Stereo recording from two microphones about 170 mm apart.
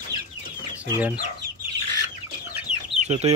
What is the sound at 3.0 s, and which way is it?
Speech, 40° right (ahead or behind).